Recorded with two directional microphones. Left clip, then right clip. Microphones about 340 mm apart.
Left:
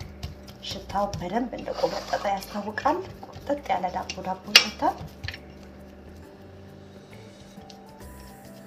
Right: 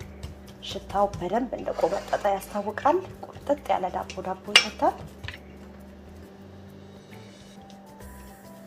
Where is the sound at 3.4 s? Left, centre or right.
Centre.